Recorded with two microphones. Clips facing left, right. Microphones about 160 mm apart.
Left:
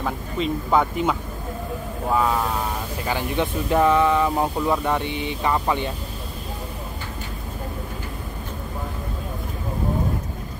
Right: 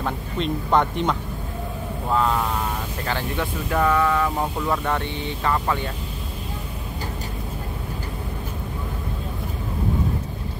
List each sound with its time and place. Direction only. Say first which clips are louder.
0.0 s speech: left 1 dB; 5° left (ahead or behind)